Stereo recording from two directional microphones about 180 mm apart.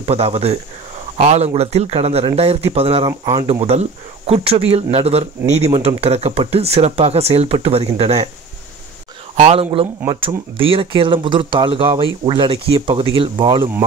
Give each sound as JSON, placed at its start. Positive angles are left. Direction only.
{"t": 0.0, "sound": "speech", "side_deg": -35}
{"t": 9.4, "sound": "speech", "side_deg": -35}